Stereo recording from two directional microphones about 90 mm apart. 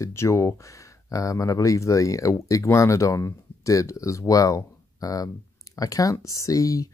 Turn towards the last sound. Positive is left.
turn(degrees=40)  # may be behind; listen again after turning